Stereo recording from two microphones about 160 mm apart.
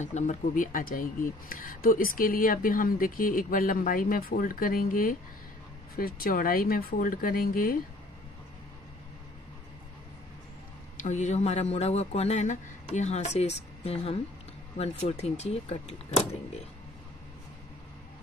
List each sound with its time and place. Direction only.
0.0 s speech: 50° left (ahead or behind)
11.0 s speech: 50° left (ahead or behind)